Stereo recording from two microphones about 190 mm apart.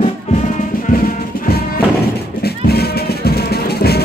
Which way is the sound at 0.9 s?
40° left (ahead or behind).